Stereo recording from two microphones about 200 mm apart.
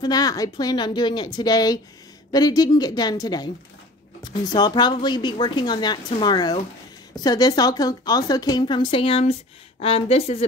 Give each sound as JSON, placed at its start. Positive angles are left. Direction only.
{"t": 0.0, "sound": "a woman's voice", "side_deg": 20}